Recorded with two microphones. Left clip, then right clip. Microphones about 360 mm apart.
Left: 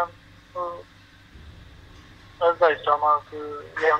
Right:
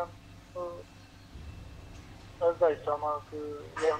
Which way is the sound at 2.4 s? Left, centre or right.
Left.